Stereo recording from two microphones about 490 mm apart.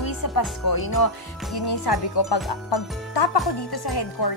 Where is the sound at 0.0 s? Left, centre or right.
Left.